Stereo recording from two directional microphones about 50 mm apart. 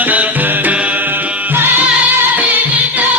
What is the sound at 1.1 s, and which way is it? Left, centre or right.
Music, right.